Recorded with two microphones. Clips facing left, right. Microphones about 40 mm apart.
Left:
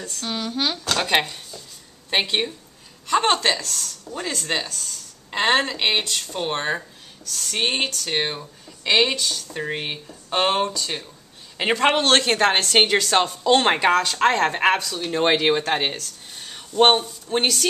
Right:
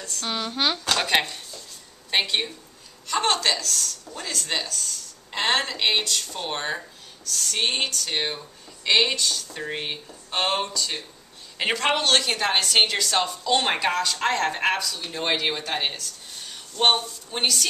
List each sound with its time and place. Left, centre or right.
0.0 s speech: centre
0.3 s speech: centre
0.9 s speech: centre
2.2 s speech: centre
7.7 s speech: left
10.6 s speech: left
12.0 s speech: left
16.3 s a sound: centre
17.3 s speech: left